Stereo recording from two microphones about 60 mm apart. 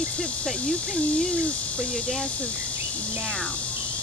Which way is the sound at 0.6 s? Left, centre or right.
Centre.